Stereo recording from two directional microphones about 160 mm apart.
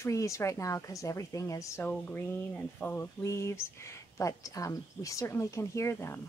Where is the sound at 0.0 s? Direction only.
20° left (ahead or behind).